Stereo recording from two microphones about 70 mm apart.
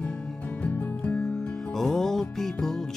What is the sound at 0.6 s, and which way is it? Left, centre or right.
Music, centre.